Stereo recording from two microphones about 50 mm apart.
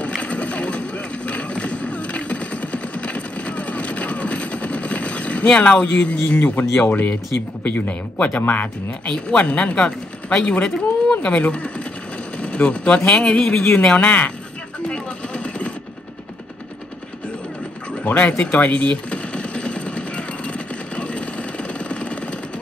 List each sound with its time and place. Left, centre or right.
0.0 s a sound: left
5.9 s speech: centre
6.9 s speech: left
9.0 s speech: centre
13.7 s speech: left
14.9 s a sound: left
18.4 s gunshot: left